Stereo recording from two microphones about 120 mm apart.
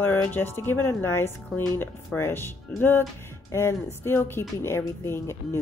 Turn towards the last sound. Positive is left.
turn(degrees=20)  # may be behind; listen again after turning